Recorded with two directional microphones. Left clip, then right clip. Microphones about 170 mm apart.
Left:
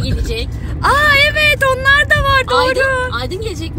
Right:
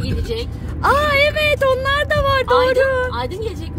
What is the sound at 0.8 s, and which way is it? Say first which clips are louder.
Speech: left 4 dB; 20° right (ahead or behind).